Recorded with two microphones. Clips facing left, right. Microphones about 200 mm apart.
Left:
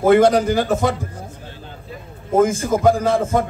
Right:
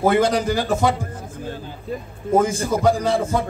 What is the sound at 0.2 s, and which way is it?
Speech, 50° left (ahead or behind).